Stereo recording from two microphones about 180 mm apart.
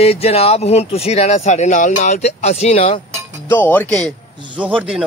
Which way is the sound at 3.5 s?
10° left (ahead or behind).